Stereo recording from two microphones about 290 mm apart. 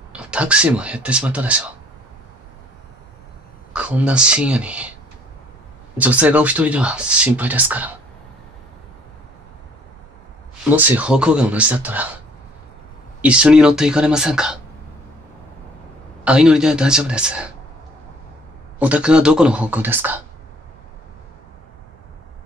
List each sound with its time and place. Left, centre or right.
0.1 s speech: centre
3.7 s speech: centre
5.9 s speech: centre
10.6 s speech: centre
13.2 s speech: centre
16.3 s speech: centre
18.8 s speech: centre